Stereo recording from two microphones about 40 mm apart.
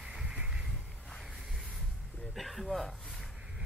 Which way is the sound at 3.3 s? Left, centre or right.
Centre.